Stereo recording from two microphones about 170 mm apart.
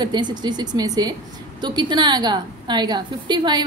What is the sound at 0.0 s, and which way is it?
A woman's voice, 25° right (ahead or behind).